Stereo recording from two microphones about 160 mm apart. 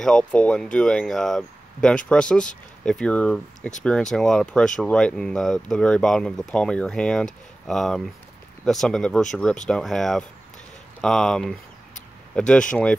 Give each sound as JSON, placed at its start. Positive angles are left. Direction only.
{"t": 0.0, "sound": "speech", "side_deg": 5}